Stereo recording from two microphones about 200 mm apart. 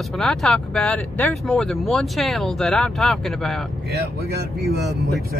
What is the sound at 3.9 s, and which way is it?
Speech, 50° right (ahead or behind).